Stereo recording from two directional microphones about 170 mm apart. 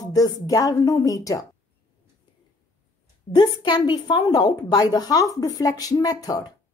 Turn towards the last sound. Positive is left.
turn(degrees=20)  # may be behind; listen again after turning